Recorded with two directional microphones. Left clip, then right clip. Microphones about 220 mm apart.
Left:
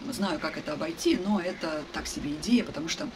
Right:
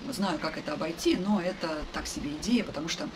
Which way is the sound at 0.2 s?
10° left (ahead or behind).